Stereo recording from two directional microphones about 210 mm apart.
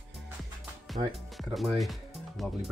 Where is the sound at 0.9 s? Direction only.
Centre (ahead or behind).